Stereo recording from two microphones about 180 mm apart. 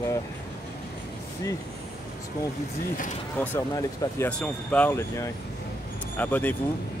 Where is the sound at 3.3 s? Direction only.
15° left (ahead or behind).